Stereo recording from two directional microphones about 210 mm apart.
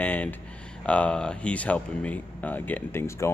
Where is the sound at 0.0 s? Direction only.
10° left (ahead or behind).